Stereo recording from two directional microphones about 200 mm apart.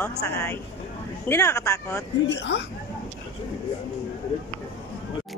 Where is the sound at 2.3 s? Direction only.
60° left (ahead or behind).